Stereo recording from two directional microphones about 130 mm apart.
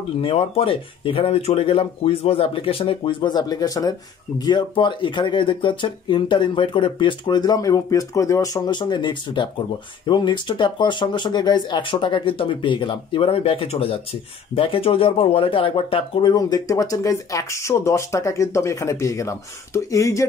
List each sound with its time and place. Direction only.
0.2 s speech: 45° left (ahead or behind); by 20.2 s 25° left (ahead or behind)